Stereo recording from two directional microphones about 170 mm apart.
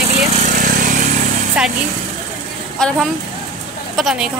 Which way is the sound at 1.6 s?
5° right (ahead or behind).